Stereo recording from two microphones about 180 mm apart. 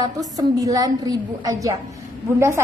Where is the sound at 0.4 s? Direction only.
20° right (ahead or behind).